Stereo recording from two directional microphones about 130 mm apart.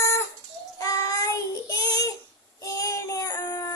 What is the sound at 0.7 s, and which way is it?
Child singing, 25° left (ahead or behind).